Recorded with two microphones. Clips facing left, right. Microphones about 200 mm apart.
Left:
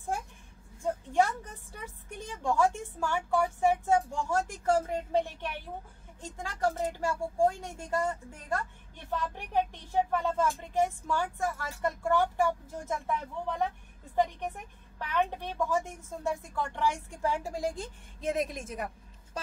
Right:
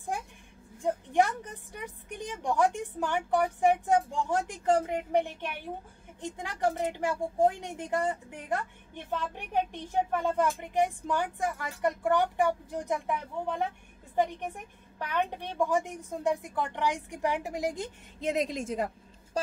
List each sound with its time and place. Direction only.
0.8 s a woman's voice: 15° right (ahead or behind)
15.0 s a woman's voice: 15° right (ahead or behind)
19.4 s a sound: 30° right (ahead or behind)